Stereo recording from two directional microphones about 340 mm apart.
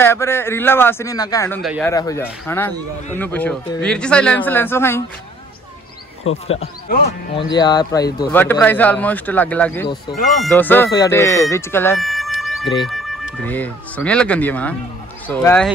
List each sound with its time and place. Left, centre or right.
0.0 s a man's voice: centre
6.2 s speech: left
6.6 s a man's voice: left; by 15.7 s centre